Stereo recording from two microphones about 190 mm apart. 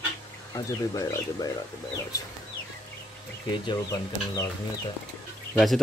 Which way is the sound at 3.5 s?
25° left (ahead or behind).